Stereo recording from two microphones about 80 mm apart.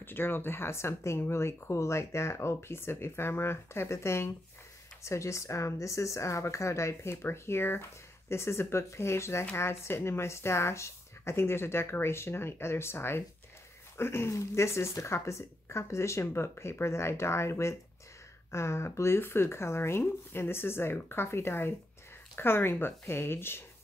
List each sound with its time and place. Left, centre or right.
0.0 s speech: left